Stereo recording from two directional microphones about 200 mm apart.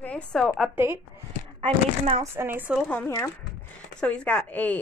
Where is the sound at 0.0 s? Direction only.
5° left (ahead or behind).